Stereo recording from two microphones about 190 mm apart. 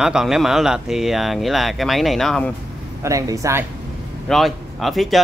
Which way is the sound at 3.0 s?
15° right (ahead or behind).